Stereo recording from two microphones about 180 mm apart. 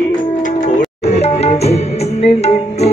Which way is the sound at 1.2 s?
35° left (ahead or behind).